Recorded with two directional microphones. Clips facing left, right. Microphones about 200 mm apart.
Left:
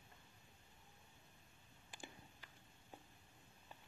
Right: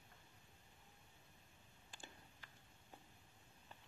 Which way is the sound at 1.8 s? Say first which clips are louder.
Left 4 dB; 15° left (ahead or behind).